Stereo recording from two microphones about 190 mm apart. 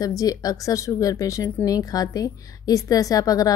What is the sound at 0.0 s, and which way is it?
A woman's voice, 20° left (ahead or behind).